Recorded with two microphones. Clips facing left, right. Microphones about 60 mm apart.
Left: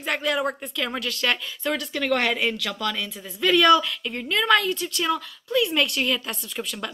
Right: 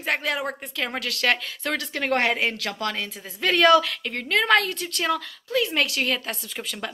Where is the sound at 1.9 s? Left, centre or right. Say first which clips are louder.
Right 1 dB; right.